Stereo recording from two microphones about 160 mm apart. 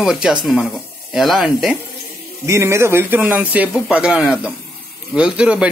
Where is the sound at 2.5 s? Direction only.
15° right (ahead or behind).